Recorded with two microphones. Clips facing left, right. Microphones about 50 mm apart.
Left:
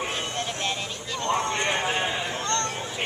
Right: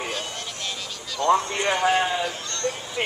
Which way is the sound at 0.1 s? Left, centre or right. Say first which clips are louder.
Left 2 dB; left.